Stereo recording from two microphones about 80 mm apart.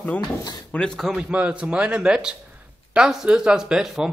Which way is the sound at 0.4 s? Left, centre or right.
Left.